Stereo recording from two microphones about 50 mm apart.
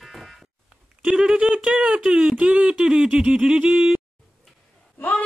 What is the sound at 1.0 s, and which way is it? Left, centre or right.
Speech, centre.